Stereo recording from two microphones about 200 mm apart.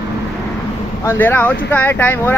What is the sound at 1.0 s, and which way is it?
Speech, 10° left (ahead or behind).